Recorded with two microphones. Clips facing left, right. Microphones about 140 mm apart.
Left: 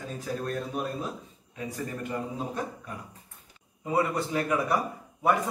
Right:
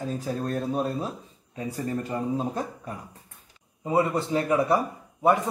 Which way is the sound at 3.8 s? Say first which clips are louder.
Right 3 dB; 25° right (ahead or behind).